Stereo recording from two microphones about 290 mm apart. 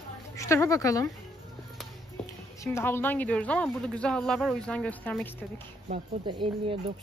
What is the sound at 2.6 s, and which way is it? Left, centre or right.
Speech, centre.